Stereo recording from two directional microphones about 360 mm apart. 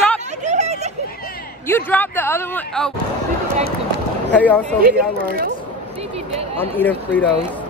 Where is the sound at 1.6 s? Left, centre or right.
Centre.